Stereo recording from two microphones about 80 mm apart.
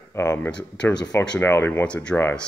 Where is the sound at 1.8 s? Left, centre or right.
Centre.